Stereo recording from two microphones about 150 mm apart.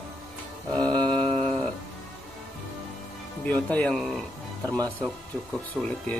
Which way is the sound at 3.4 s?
10° left (ahead or behind).